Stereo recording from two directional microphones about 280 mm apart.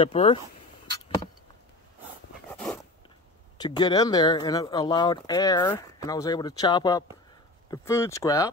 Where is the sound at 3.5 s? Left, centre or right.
Centre.